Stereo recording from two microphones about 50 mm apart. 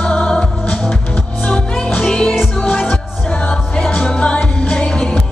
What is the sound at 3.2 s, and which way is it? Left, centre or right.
Music, centre.